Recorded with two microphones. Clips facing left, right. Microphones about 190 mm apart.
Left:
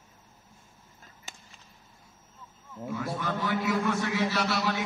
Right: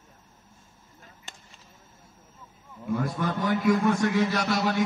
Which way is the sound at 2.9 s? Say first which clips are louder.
Right 4 dB; 50° right (ahead or behind).